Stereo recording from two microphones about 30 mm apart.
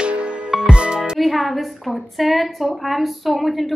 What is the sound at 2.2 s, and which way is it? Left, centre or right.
A woman's voice, centre.